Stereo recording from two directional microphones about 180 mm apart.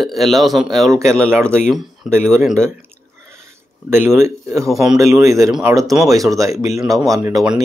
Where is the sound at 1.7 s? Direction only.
Centre (ahead or behind).